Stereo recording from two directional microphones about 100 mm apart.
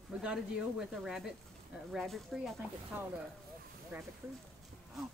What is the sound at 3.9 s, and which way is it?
Speech, 20° right (ahead or behind).